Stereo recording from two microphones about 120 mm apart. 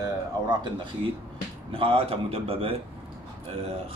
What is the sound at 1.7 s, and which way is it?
A man's voice, 50° right (ahead or behind).